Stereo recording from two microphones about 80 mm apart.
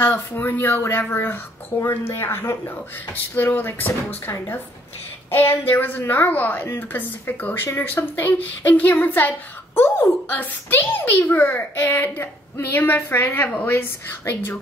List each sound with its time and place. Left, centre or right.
0.4 s a child's voice: left
5.7 s a child's voice: left